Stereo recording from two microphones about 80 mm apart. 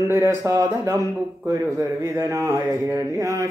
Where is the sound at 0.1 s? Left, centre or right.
Right.